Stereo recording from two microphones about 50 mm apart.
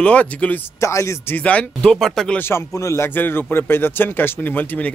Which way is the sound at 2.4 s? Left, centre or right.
Left.